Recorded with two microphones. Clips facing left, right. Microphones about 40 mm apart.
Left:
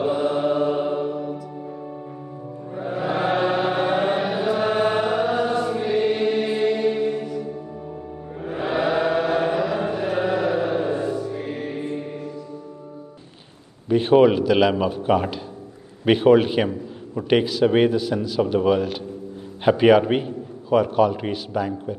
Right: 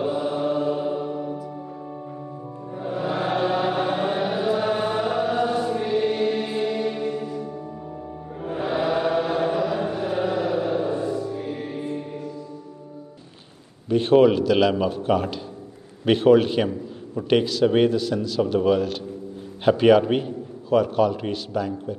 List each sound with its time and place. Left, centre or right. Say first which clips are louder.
0.1 s mantra: left 3 dB; left
2.7 s chant: left 2 dB; left
5.3 s chant: left 1 dB; left
5.9 s choir: left 3 dB; left
8.4 s chant: left 1 dB; centre; by 9.6 s left
9.6 s a sound: left 1 dB; left
10.2 s chant: left 2 dB; left
13.8 s a man's voice: left 1 dB; centre